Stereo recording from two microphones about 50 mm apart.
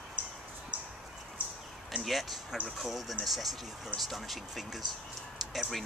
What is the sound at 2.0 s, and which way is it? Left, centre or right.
Speech, right.